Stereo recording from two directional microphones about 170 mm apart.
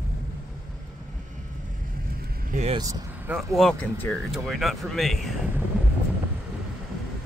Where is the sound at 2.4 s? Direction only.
45° right (ahead or behind).